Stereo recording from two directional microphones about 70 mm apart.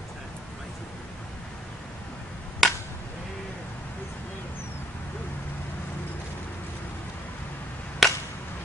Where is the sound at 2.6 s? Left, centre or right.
Centre.